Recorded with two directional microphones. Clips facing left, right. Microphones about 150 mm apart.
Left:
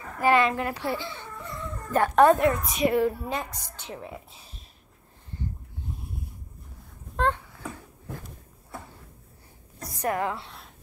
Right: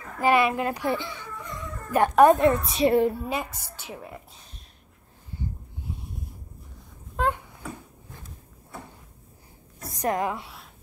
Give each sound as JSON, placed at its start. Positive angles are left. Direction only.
{"t": 0.2, "sound": "a child's voice", "side_deg": -15}
{"t": 3.3, "sound": "a woman's voice", "side_deg": -10}
{"t": 4.1, "sound": "speech", "side_deg": 5}
{"t": 5.9, "sound": "a sound", "side_deg": 0}
{"t": 7.2, "sound": "a sound", "side_deg": -10}
{"t": 9.8, "sound": "a woman's voice", "side_deg": -20}